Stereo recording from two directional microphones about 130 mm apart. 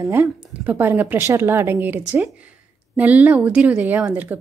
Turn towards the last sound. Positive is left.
turn(degrees=-10)  # may be behind; listen again after turning